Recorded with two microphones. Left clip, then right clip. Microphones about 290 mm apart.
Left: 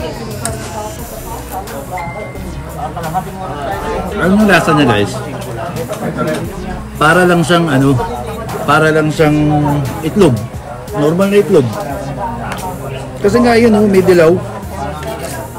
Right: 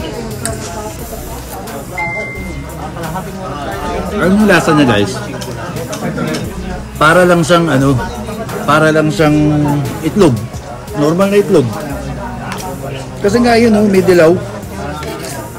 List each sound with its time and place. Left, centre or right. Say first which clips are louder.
4.2 s a man's voice: even; centre
7.0 s a man's voice: right 1 dB; centre
13.2 s a man's voice: left 1 dB; centre